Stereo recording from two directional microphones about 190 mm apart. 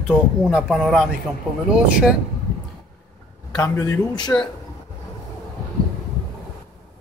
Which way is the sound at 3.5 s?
15° left (ahead or behind).